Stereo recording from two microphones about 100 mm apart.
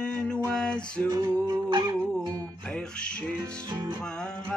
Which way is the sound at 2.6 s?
10° left (ahead or behind).